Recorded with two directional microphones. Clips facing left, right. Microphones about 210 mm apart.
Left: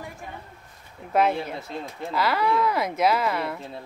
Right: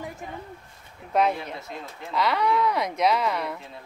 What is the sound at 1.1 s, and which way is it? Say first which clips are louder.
Speech: left 1 dB; 5° left (ahead or behind).